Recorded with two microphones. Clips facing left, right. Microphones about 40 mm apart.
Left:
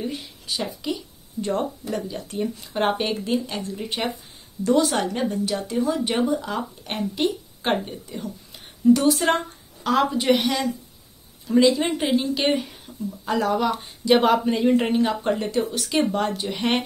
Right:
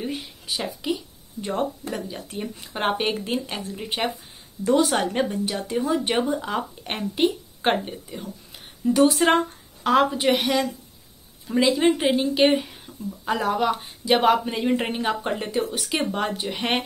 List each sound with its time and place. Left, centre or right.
0.0 s speech: centre
9.0 s speech: right
9.8 s speech: centre